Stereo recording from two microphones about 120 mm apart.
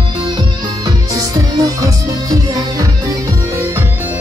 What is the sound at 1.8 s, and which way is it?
Music, 30° right (ahead or behind).